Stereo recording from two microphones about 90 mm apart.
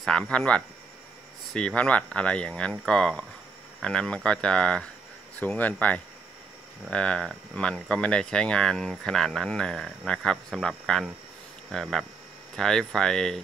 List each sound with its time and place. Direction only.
0.0 s speech: 10° left (ahead or behind)
1.5 s speech: 10° left (ahead or behind)